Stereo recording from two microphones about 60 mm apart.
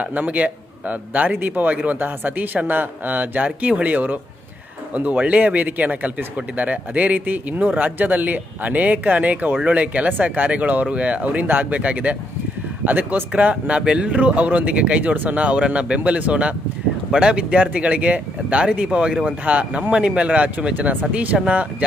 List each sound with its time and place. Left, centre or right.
0.0 s speech: right